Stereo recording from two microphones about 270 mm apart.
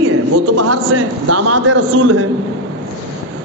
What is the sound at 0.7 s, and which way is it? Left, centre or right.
A man's voice, right.